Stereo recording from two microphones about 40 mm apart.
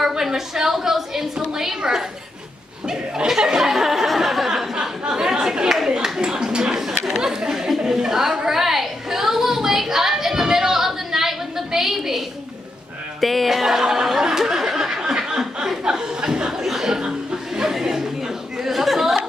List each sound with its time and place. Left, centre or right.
0.0 s a woman's voice: centre
4.7 s chatter: right
8.5 s a sound: centre
13.2 s music: centre
13.5 s snicker: centre
16.6 s chuckle: centre
17.6 s chatter: centre